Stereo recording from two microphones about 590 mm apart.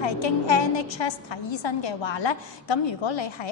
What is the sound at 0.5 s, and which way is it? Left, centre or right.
A woman's voice, left.